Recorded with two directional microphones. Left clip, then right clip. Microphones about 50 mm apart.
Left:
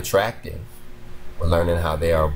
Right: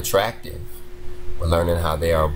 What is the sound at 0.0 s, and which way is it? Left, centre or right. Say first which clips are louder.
Speech: even; left.